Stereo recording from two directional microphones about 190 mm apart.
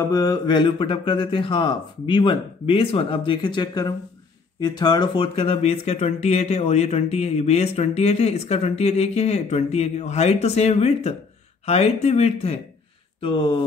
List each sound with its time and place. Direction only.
0.1 s speech: 20° left (ahead or behind)